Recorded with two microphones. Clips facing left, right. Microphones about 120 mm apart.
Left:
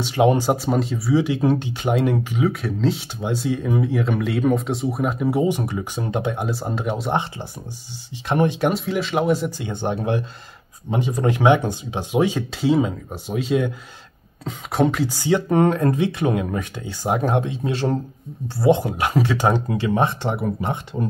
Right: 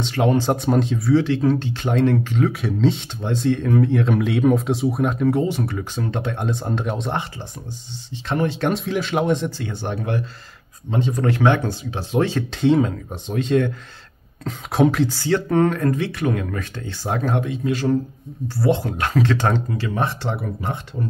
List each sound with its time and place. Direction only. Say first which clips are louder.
0.0 s speech: left 2 dB; 15° left (ahead or behind)
0.5 s speech: right 1 dB; 5° left (ahead or behind)
2.5 s speech: right 2 dB; centre (ahead or behind)
7.1 s speech: left 3 dB; 15° left (ahead or behind); by 15.0 s centre (ahead or behind)
15.0 s speech: left 1 dB; 15° left (ahead or behind)
18.5 s speech: left 3 dB; 15° left (ahead or behind)